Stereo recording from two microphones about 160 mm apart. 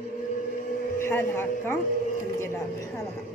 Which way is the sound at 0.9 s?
15° left (ahead or behind).